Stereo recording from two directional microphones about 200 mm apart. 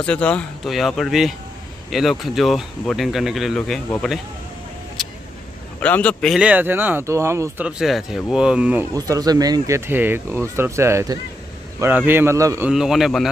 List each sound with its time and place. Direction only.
0.0 s speech: 5° left (ahead or behind)
5.8 s speech: 5° left (ahead or behind)
8.9 s speech: 15° right (ahead or behind); by 13.3 s centre (ahead or behind)